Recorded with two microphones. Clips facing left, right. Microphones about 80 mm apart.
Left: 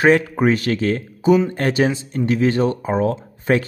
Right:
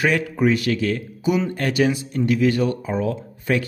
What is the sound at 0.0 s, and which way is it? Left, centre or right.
A man's voice, left.